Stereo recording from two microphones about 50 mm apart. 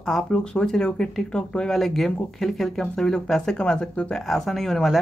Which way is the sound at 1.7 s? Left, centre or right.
Centre.